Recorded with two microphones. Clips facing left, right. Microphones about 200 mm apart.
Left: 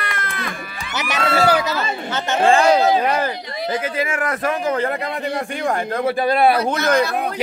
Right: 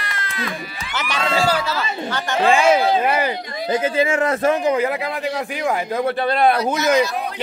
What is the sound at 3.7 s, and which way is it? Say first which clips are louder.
A man's voice: right 6 dB; 25° right (ahead or behind).